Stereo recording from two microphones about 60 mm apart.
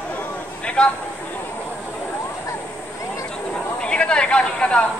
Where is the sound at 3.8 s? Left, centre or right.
Centre.